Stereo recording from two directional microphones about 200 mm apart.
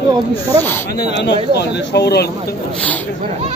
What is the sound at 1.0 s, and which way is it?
Speech, 60° left (ahead or behind).